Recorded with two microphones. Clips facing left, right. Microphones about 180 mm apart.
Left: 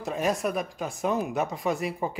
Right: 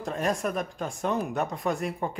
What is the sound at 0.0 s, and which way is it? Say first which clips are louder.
Speech: left 1 dB; centre (ahead or behind).